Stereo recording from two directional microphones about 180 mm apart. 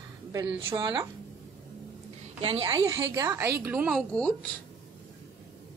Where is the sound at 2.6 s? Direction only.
20° right (ahead or behind).